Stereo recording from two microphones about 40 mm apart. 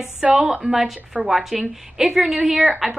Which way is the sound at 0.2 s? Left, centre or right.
Centre.